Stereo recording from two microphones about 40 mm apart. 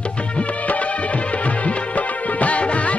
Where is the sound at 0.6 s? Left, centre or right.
Left.